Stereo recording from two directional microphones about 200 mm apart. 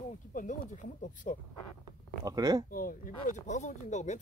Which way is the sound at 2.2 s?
20° right (ahead or behind).